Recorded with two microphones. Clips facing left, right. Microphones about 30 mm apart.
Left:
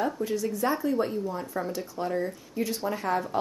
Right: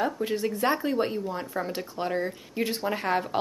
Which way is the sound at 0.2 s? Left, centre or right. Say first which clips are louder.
Right 1 dB; right.